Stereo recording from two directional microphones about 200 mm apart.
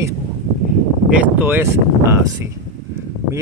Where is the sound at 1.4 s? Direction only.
10° right (ahead or behind).